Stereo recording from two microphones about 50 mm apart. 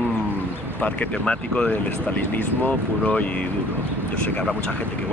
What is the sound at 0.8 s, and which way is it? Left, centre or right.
Speech, left.